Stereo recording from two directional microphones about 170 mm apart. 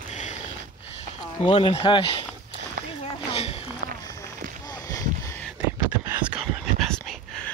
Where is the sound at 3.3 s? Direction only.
35° left (ahead or behind).